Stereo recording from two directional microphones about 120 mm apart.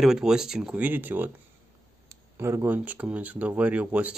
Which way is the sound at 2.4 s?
25° right (ahead or behind).